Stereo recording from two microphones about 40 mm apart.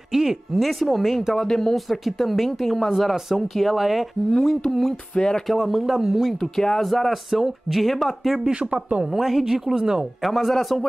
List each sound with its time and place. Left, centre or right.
0.1 s speech: centre
0.6 s speech: centre
1.3 s speech: centre
1.9 s speech: centre
4.4 s speech: centre
5.1 s music: left
5.5 s speech: centre
5.9 s speech: centre
6.4 s speech: centre
10.2 s speech: centre